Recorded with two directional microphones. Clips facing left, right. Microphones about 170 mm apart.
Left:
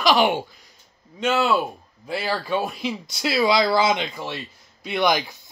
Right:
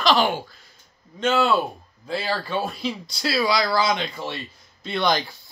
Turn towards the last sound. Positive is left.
turn(degrees=15)  # may be behind; listen again after turning